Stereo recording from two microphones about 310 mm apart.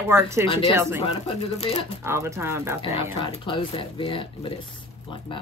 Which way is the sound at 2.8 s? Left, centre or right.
Centre.